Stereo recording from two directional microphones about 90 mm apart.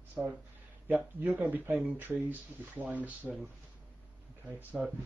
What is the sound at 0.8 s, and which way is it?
Speech, 20° right (ahead or behind).